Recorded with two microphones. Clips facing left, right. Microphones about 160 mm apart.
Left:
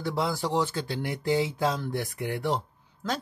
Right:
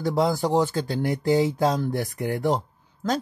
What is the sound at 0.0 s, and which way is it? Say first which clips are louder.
Speech: right 6 dB; 40° right (ahead or behind).